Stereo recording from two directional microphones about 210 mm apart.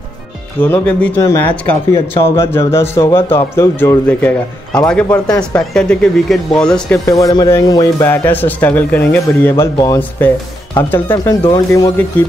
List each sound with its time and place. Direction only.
0.6 s speech: 5° left (ahead or behind)
7.1 s speech: 15° left (ahead or behind)